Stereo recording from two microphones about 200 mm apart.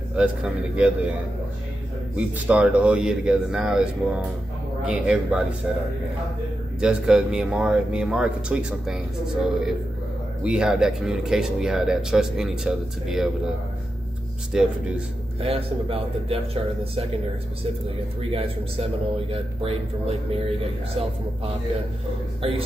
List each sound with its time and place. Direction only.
0.1 s speech: 5° right (ahead or behind)
2.1 s speech: 5° right (ahead or behind)
6.8 s speech: 5° right (ahead or behind)
14.5 s speech: 5° right (ahead or behind)
15.4 s speech: 30° right (ahead or behind)
19.3 s speech: 30° right (ahead or behind)
22.4 s speech: 30° right (ahead or behind)